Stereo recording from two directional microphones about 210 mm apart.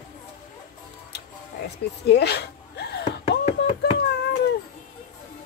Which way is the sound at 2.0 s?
55° left (ahead or behind).